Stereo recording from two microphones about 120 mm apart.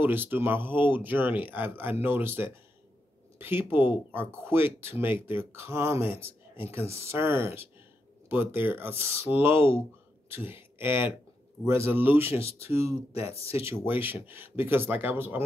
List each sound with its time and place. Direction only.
0.0 s speech: 15° right (ahead or behind)
13.4 s speech: 55° left (ahead or behind)
13.7 s speech: 15° right (ahead or behind)